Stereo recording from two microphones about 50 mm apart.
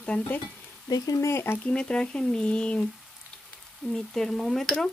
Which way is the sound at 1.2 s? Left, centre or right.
Left.